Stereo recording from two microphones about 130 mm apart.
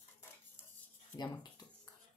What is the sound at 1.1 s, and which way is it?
Speech, 15° left (ahead or behind).